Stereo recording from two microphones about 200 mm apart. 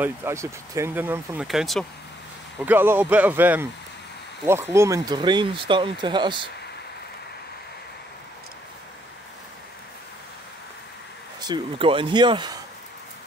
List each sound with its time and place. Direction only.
0.0 s speech: 10° right (ahead or behind)
11.4 s speech: 25° right (ahead or behind)